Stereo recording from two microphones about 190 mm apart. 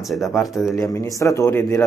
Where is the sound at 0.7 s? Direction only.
15° left (ahead or behind).